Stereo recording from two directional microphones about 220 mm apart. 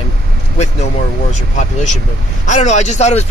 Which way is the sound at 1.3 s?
35° left (ahead or behind).